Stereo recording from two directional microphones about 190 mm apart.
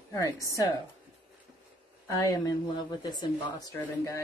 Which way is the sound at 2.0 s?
20° left (ahead or behind).